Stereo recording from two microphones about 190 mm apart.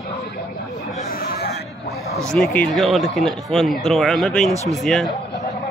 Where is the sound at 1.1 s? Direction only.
50° left (ahead or behind).